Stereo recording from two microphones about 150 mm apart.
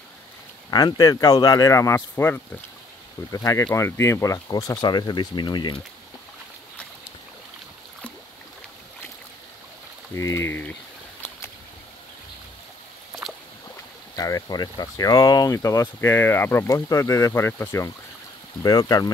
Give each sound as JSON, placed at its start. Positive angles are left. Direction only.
{"t": 0.7, "sound": "speech", "side_deg": 25}
{"t": 10.1, "sound": "speech", "side_deg": 20}
{"t": 14.1, "sound": "speech", "side_deg": 25}